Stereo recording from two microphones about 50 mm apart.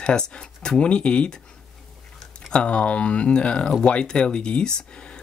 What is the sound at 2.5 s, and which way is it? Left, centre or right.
Speech, left.